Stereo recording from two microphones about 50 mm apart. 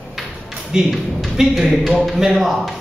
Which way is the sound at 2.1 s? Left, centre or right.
Centre.